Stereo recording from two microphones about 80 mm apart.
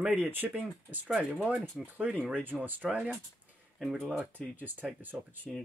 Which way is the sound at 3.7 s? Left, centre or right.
Centre.